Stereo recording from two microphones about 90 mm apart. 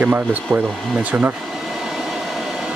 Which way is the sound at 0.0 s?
15° right (ahead or behind).